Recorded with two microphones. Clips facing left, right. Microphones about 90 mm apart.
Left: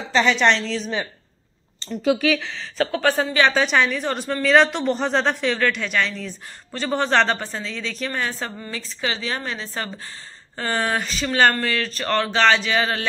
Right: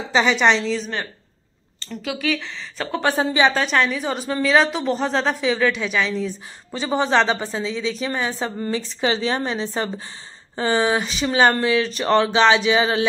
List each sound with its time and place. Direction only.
0.1 s a woman's voice: 10° right (ahead or behind)
1.8 s speech: 30° left (ahead or behind)
3.1 s a woman's voice: 20° right (ahead or behind)
3.5 s a woman's voice: centre (ahead or behind)
8.5 s a woman's voice: 25° right (ahead or behind)